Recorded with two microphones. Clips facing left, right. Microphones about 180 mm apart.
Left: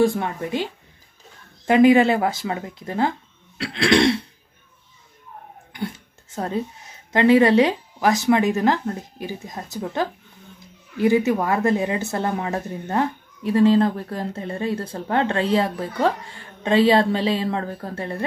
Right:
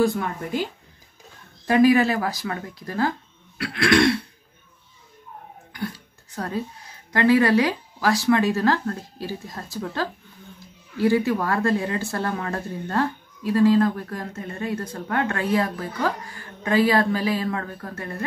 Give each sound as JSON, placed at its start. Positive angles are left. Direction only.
{"t": 0.0, "sound": "speech", "side_deg": 25}
{"t": 1.7, "sound": "speech", "side_deg": 25}
{"t": 5.7, "sound": "speech", "side_deg": 20}